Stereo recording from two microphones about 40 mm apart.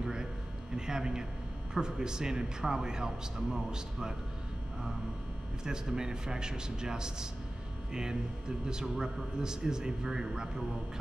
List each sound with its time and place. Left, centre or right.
0.0 s a sound: centre
1.7 s speech: centre
5.7 s speech: centre